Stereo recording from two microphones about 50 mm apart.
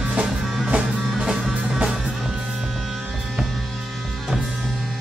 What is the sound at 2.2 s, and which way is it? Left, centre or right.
Music, centre.